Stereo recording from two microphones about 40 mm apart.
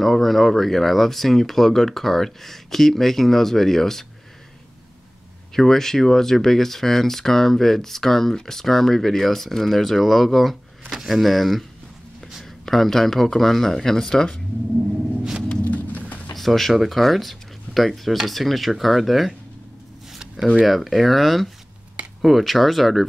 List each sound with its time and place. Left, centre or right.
0.0 s speech: centre
5.6 s speech: centre
12.6 s speech: centre
15.6 s rain: left
16.3 s speech: centre
20.5 s speech: centre